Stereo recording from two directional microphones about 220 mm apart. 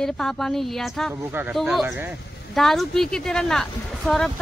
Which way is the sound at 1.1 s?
10° right (ahead or behind).